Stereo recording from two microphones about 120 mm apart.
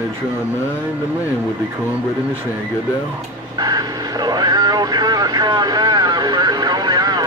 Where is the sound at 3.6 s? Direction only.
35° right (ahead or behind).